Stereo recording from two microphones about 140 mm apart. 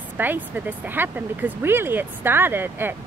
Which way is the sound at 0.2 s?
15° right (ahead or behind).